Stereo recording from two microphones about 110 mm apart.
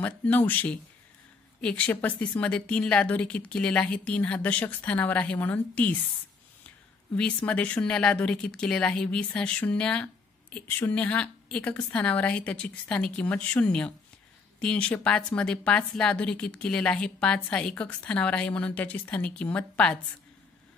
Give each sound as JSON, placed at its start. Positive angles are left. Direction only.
{"t": 0.0, "sound": "a woman's voice", "side_deg": 15}
{"t": 7.4, "sound": "a woman's voice", "side_deg": 10}